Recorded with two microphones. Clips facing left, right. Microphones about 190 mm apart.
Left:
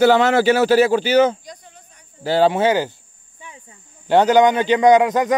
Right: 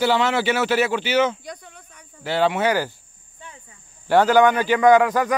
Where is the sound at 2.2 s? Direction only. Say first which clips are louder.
Left 5 dB; 35° left (ahead or behind).